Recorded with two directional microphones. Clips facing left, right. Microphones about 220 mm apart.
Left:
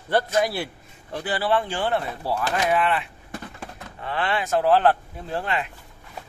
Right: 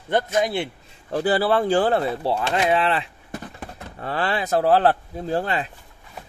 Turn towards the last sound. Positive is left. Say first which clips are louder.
# right 4 dB
turn(degrees=-35)  # may be behind; listen again after turning